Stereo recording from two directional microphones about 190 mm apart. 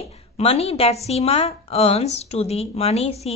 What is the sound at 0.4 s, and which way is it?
A woman's voice, 30° left (ahead or behind).